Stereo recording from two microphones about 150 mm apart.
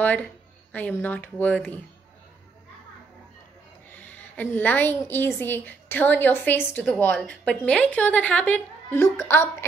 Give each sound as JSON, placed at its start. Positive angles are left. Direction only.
{"t": 0.0, "sound": "a woman's voice", "side_deg": 10}
{"t": 3.9, "sound": "a woman's voice", "side_deg": 10}